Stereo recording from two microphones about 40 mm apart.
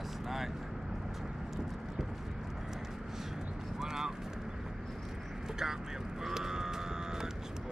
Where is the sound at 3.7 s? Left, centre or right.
Centre.